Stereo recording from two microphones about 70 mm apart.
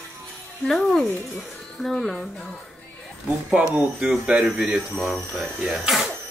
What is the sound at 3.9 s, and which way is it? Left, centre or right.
Speech, centre.